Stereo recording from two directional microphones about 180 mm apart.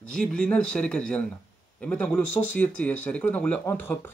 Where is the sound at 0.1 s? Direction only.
5° left (ahead or behind).